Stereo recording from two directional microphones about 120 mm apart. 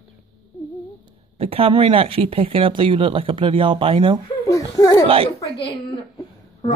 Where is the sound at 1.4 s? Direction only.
55° right (ahead or behind).